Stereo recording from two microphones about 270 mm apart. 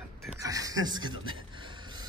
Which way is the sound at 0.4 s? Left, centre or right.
Centre.